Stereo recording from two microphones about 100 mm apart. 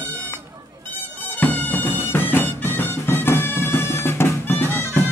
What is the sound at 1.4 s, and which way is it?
Bagpipes, 20° left (ahead or behind).